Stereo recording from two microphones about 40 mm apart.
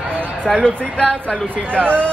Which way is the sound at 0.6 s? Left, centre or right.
Left.